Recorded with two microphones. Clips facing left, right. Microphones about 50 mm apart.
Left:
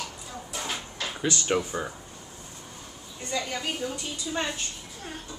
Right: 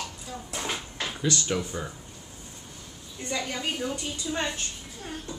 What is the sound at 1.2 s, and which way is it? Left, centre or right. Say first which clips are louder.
Speech: left 2 dB; left.